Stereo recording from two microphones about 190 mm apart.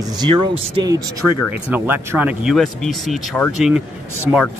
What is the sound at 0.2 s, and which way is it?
Speech, 20° right (ahead or behind).